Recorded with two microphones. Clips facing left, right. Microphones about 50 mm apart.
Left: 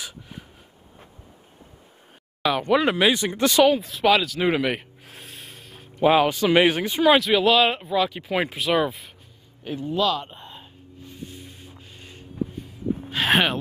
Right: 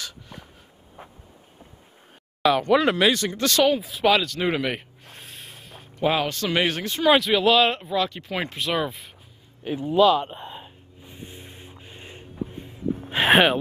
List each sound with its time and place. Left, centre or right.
0.0 s a sound: centre
2.4 s speech: centre
3.7 s speech: centre
7.1 s speech: centre
9.7 s a sound: centre; by 11.7 s right
11.7 s music: right
13.3 s speech: centre